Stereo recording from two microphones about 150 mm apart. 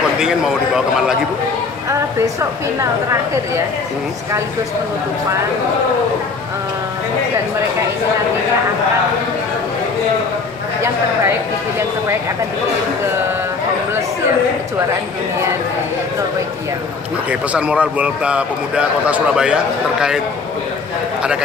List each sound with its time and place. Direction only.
0.2 s a man's voice: 5° right (ahead or behind)
1.9 s a woman's voice: 20° right (ahead or behind)
17.3 s a man's voice: 10° right (ahead or behind)